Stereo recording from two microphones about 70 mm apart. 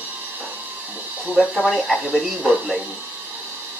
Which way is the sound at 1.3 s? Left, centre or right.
Centre.